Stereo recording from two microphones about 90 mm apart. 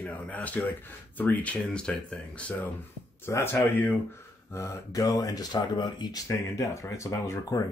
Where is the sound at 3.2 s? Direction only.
30° left (ahead or behind).